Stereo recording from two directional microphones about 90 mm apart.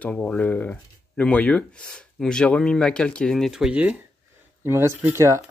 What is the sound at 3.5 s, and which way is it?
Speech, 10° right (ahead or behind).